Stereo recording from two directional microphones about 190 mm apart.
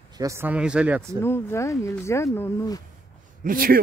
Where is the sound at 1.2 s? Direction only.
15° left (ahead or behind).